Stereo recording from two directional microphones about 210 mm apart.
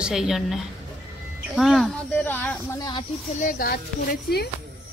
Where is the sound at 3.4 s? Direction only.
40° left (ahead or behind).